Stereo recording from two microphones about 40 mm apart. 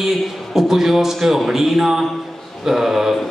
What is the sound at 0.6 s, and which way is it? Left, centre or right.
A man's voice, centre.